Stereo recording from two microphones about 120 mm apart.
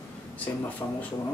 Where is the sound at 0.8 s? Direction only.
15° left (ahead or behind).